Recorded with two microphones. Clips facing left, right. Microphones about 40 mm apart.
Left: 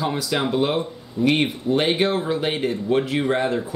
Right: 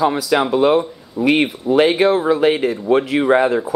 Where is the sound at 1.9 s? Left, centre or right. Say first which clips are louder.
Right 6 dB; centre.